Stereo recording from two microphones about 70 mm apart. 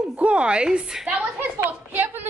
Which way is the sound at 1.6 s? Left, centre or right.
Right.